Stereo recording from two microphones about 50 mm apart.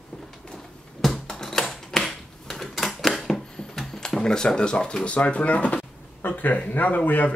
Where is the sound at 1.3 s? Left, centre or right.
Centre.